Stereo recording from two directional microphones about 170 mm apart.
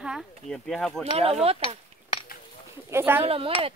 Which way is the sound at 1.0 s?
35° right (ahead or behind).